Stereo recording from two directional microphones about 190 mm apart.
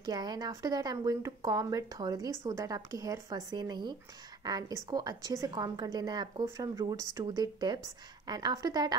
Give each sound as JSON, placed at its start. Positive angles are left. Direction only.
{"t": 0.0, "sound": "a woman's voice", "side_deg": -20}